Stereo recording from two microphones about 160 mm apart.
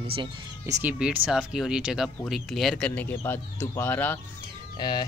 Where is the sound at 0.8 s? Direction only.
10° right (ahead or behind); by 4.2 s 10° left (ahead or behind).